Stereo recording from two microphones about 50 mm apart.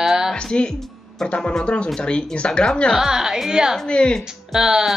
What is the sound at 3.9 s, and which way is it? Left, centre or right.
Speech, centre.